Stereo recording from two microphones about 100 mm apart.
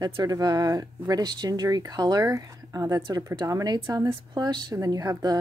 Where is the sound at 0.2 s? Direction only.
40° right (ahead or behind).